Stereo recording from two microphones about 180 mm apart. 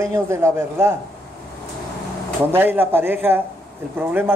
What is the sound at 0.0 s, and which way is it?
Speech, 15° right (ahead or behind).